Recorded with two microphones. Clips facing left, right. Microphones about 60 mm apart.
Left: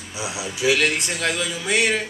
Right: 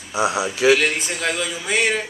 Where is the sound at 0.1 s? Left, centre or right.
Right.